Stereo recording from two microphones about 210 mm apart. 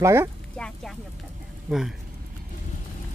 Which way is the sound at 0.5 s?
5° left (ahead or behind).